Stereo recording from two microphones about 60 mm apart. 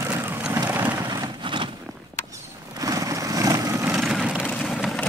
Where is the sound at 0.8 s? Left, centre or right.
Right.